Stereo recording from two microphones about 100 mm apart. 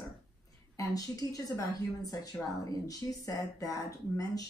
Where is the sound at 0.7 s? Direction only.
35° left (ahead or behind).